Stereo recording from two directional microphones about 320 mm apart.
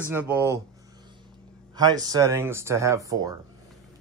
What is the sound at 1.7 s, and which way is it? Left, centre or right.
Speech, centre.